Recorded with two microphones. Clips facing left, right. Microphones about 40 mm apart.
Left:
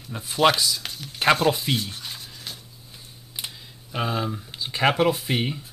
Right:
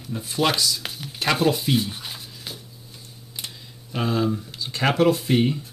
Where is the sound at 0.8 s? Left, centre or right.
Centre.